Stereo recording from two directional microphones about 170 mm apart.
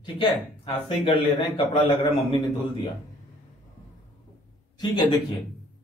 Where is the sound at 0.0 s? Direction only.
25° left (ahead or behind).